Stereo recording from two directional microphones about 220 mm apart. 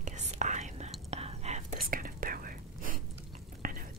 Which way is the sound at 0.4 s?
35° right (ahead or behind).